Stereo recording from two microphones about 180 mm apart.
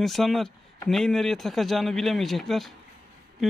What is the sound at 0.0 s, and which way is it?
Speech, centre (ahead or behind).